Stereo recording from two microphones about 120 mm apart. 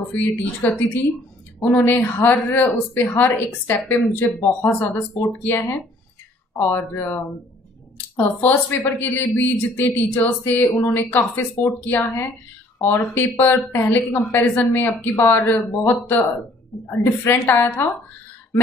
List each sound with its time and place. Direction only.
0.1 s a woman's voice: 15° left (ahead or behind)